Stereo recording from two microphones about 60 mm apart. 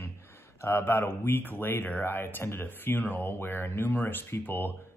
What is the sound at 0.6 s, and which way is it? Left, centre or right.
Speech, left.